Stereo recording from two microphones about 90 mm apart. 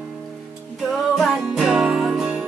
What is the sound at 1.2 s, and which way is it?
Music, 5° right (ahead or behind).